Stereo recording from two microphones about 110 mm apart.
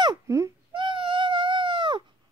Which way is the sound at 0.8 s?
45° right (ahead or behind).